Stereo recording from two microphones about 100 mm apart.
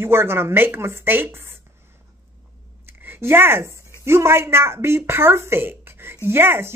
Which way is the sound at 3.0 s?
20° right (ahead or behind).